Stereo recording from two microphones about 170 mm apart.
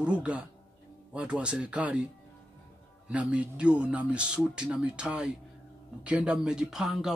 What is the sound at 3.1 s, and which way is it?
A man's voice, 5° right (ahead or behind).